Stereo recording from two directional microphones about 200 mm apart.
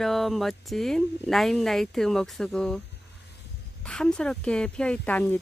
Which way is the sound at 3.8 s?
5° left (ahead or behind).